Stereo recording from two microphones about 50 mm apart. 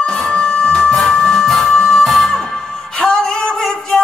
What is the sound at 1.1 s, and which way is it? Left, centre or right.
Music, centre.